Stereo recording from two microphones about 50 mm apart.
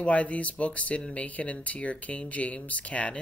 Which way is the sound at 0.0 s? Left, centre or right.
Left.